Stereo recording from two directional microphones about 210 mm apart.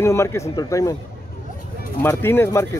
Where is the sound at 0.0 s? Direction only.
15° left (ahead or behind).